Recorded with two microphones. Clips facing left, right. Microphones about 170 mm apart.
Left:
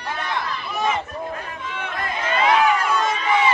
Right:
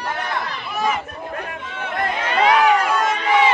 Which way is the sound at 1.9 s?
70° right (ahead or behind).